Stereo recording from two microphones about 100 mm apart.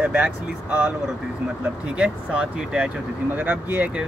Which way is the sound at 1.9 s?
10° right (ahead or behind).